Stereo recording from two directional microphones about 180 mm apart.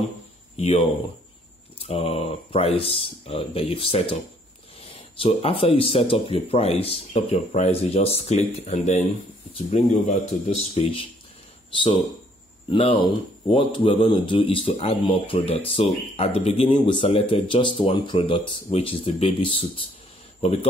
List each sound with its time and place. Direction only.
0.6 s speech: 35° left (ahead or behind)